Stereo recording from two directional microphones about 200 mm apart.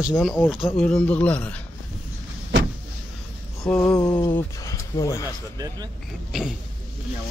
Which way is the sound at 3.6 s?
15° left (ahead or behind).